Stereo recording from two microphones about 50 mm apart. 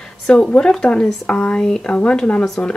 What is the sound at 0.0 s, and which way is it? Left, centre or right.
Speech, left.